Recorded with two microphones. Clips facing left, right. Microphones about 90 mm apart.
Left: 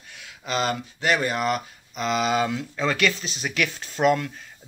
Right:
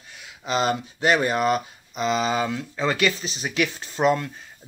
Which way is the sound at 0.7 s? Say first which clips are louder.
Right 3 dB; 25° right (ahead or behind).